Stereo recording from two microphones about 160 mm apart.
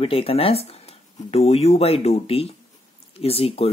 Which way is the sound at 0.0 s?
35° left (ahead or behind).